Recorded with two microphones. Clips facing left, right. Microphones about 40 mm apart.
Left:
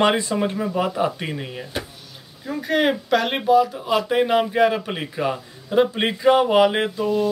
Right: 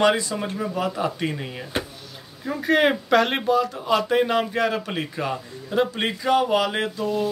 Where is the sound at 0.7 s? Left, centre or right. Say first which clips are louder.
Left 3 dB; centre.